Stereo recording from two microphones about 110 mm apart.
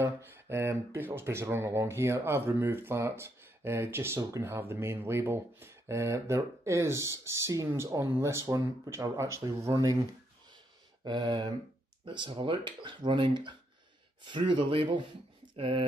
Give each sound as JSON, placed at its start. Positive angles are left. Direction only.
{"t": 0.0, "sound": "speech", "side_deg": -25}
{"t": 11.1, "sound": "speech", "side_deg": -45}